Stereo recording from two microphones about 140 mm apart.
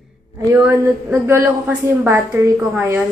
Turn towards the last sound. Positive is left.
turn(degrees=-10)  # may be behind; listen again after turning